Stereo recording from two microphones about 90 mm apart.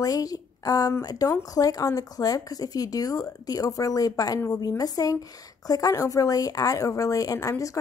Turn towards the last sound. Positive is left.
turn(degrees=40)  # may be behind; listen again after turning